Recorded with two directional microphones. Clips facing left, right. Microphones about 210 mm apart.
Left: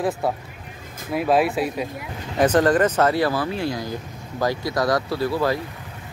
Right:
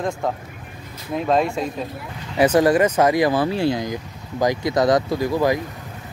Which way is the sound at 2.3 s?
10° right (ahead or behind).